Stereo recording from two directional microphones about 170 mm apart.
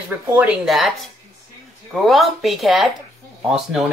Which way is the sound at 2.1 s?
Centre (ahead or behind).